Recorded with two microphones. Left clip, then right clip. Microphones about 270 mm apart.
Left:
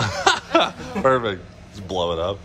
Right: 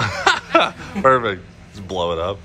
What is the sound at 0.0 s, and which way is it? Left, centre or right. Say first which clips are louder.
Chuckle: right 2 dB; centre.